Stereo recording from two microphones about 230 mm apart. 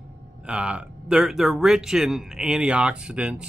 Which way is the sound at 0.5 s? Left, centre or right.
Centre.